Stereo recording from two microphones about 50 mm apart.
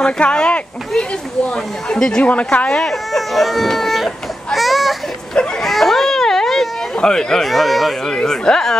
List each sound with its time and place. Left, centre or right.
0.0 s speech: centre
2.2 s speech: left
2.9 s speech: centre
5.6 s a sound: centre
7.0 s speech: centre
7.4 s speech: centre
8.1 s speech: centre